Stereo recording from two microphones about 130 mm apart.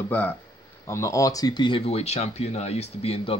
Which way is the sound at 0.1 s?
15° left (ahead or behind).